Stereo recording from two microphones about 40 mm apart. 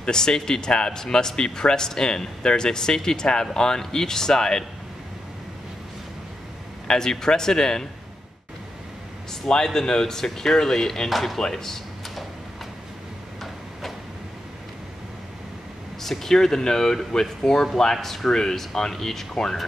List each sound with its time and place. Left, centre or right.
0.0 s a man's voice: centre
6.9 s a man's voice: centre
9.7 s a man's voice: centre
11.1 s a man's voice: centre
16.0 s a man's voice: centre